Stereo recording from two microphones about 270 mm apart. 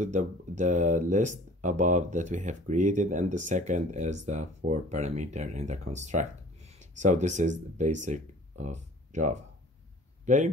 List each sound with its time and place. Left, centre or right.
0.0 s speech: right